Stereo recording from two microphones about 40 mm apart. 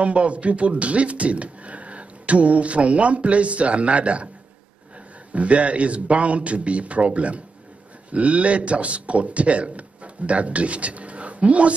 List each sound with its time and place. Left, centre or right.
0.0 s speech: right
5.3 s a man's voice: right